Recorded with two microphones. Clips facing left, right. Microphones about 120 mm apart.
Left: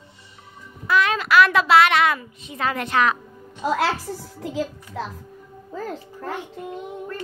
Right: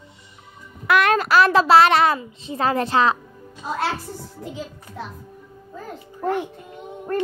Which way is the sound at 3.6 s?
90° left.